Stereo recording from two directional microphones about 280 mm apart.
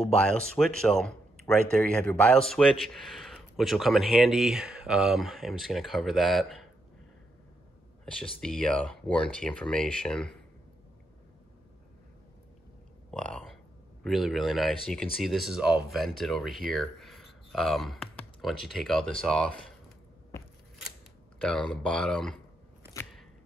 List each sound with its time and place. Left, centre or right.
0.3 s speech: centre
8.0 s speech: centre
13.1 s speech: centre
21.4 s speech: centre